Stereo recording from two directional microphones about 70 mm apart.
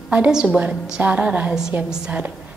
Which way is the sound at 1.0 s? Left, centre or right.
Right.